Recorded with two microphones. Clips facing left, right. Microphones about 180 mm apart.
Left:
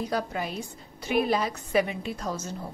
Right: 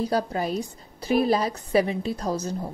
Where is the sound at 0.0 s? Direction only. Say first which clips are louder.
Right 5 dB; 35° right (ahead or behind).